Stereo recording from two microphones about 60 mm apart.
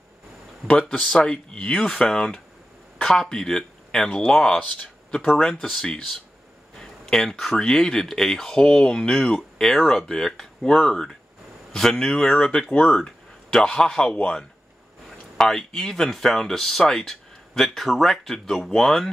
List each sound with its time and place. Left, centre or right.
0.7 s speech: centre
15.3 s speech: centre